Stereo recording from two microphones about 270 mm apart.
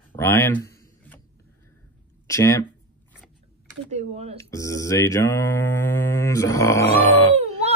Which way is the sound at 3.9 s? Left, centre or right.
Right.